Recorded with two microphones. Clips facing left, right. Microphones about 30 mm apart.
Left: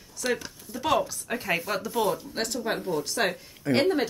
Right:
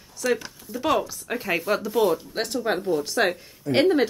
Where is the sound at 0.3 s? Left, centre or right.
Centre.